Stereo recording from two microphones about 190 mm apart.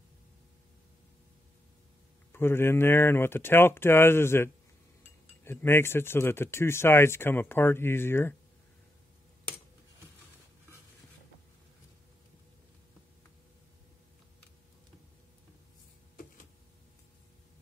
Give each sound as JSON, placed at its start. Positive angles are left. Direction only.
{"t": 2.3, "sound": "speech", "side_deg": 10}